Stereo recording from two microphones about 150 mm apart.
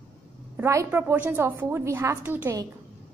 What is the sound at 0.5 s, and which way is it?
A woman's voice, 20° right (ahead or behind).